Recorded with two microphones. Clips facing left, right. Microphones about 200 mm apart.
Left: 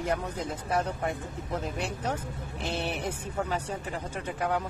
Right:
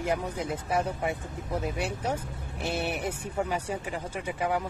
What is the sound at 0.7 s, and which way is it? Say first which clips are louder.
Speech: even; 10° right (ahead or behind).